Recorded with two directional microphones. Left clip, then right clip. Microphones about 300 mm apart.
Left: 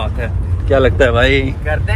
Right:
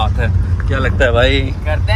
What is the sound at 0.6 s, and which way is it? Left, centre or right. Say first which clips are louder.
Speech: left 4 dB; centre.